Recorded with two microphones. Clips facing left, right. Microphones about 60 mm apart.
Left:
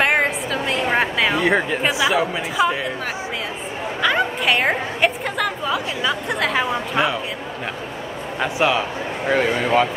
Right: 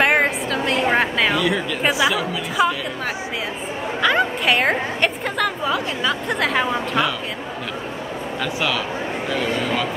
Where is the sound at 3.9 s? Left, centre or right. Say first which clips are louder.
Right 1 dB; centre.